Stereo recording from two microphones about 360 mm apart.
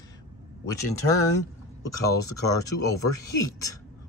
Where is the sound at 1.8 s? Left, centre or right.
Left.